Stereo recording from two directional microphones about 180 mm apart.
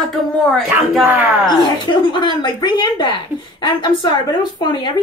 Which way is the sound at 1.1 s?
10° right (ahead or behind).